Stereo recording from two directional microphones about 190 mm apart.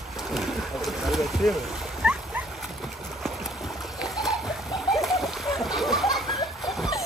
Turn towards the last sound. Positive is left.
turn(degrees=0)  # may be behind; listen again after turning